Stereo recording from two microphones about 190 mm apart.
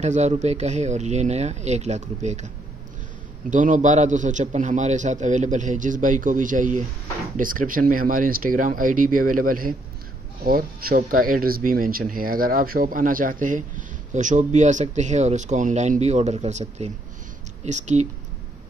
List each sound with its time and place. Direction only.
0.0 s a man's voice: 35° right (ahead or behind)